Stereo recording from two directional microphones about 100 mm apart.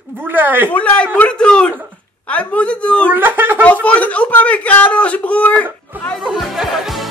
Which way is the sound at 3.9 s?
15° left (ahead or behind).